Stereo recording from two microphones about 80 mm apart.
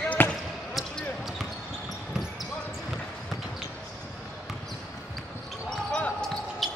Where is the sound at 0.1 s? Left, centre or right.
Centre.